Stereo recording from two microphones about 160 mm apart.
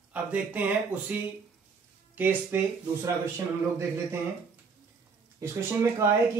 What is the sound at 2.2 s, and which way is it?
Speech, 10° right (ahead or behind).